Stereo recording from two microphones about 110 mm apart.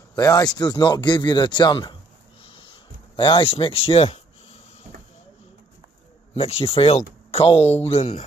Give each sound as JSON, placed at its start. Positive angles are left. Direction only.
{"t": 0.1, "sound": "speech", "side_deg": 35}
{"t": 2.4, "sound": "a sound", "side_deg": 55}
{"t": 6.3, "sound": "speech", "side_deg": 65}
{"t": 7.8, "sound": "speech", "side_deg": 70}